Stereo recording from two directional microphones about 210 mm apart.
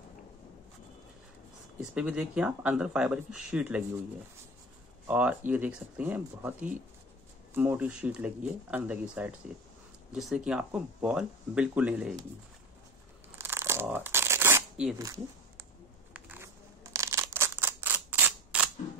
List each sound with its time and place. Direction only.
1.8 s speech: 5° right (ahead or behind)
5.0 s speech: 5° right (ahead or behind)
13.4 s tearing: 10° right (ahead or behind)
16.1 s scissors: 10° right (ahead or behind)